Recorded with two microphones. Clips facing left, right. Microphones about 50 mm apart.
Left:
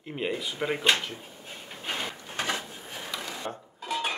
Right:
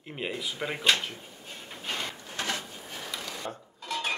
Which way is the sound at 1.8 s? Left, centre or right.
Centre.